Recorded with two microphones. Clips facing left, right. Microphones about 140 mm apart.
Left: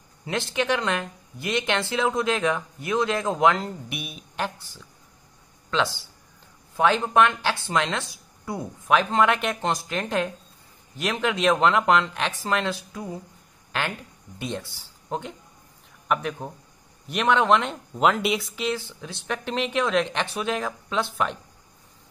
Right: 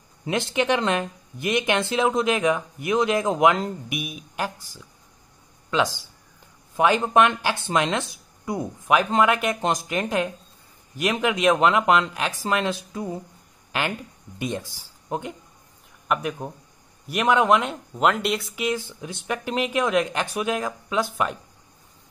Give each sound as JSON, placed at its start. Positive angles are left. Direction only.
{"t": 0.2, "sound": "speech", "side_deg": -20}
{"t": 13.7, "sound": "a sound", "side_deg": -10}
{"t": 14.4, "sound": "speech", "side_deg": -15}
{"t": 18.6, "sound": "speech", "side_deg": -15}